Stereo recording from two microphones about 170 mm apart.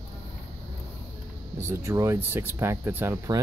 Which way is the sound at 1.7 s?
15° right (ahead or behind).